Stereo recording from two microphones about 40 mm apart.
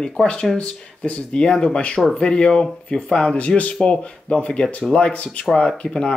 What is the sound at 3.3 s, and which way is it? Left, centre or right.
Speech, left.